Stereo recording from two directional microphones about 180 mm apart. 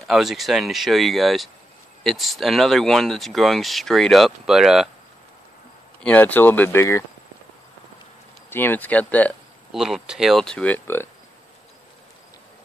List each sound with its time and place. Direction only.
0.0 s speech: centre (ahead or behind)
6.0 s speech: 10° left (ahead or behind)
8.5 s speech: 10° left (ahead or behind)
9.7 s speech: 5° right (ahead or behind)